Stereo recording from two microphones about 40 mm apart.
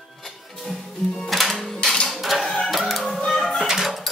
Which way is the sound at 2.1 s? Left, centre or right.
Centre.